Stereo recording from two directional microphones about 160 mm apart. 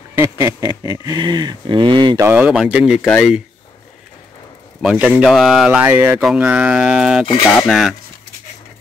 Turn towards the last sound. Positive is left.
turn(degrees=0)  # may be behind; listen again after turning